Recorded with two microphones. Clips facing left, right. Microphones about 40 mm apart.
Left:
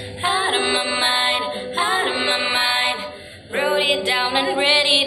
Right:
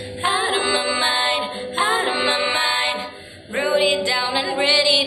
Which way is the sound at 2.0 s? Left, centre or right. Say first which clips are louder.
Right 1 dB; centre.